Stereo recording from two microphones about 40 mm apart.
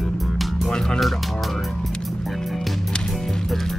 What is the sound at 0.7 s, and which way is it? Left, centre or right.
Speech, centre.